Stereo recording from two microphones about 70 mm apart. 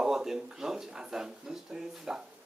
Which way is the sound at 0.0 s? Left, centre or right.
Centre.